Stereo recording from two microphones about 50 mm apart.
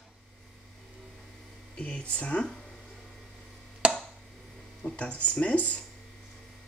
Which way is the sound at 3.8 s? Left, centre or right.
Right.